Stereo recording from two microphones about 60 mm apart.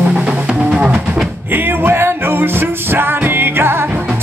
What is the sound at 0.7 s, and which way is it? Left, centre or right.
Music, centre.